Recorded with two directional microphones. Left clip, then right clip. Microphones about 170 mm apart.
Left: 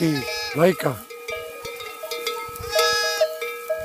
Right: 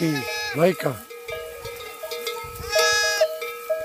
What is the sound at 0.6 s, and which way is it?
Speech, 10° left (ahead or behind).